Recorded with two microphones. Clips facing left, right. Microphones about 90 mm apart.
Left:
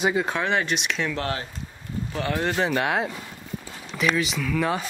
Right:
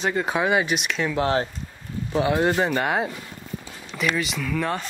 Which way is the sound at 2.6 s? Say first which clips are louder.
Right 1 dB; centre (ahead or behind).